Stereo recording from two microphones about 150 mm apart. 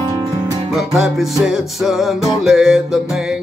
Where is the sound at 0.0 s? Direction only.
25° right (ahead or behind).